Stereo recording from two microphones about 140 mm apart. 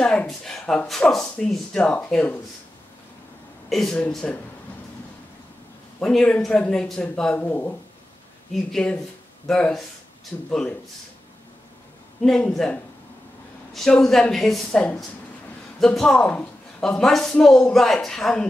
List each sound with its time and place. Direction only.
0.0 s speech: 5° left (ahead or behind)
3.6 s speech: centre (ahead or behind)
5.9 s speech: 5° left (ahead or behind)
12.2 s speech: 5° left (ahead or behind)
13.7 s speech: 5° left (ahead or behind)